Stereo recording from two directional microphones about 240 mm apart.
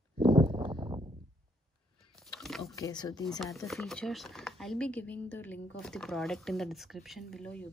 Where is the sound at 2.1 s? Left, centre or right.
Centre.